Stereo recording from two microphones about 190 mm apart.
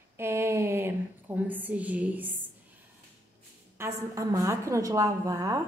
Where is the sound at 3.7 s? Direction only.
15° right (ahead or behind).